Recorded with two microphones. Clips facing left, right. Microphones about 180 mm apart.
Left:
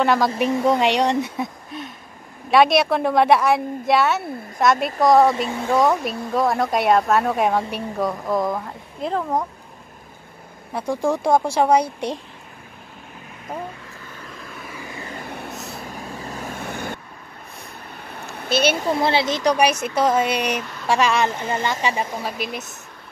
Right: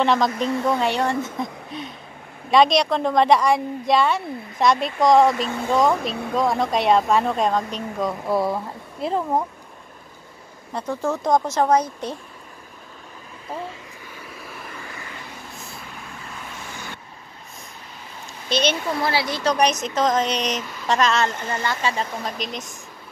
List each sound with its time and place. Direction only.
0.0 s a woman's voice: 5° left (ahead or behind)
0.4 s a woman's voice: 15° left (ahead or behind)
8.1 s a woman's voice: 5° right (ahead or behind)
10.7 s speech: 10° left (ahead or behind)
14.2 s vehicle: 5° right (ahead or behind)
15.0 s vehicle: 50° left (ahead or behind)
16.0 s vehicle: 40° left (ahead or behind)
16.5 s vehicle: 55° left (ahead or behind)
18.0 s a sound: 60° left (ahead or behind)
18.5 s speech: 10° left (ahead or behind)
18.9 s speech: 25° left (ahead or behind)
19.5 s speech: 10° left (ahead or behind)